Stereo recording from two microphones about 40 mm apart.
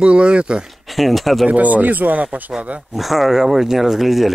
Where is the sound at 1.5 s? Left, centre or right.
Right.